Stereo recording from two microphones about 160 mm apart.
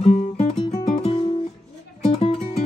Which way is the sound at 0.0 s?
40° left (ahead or behind).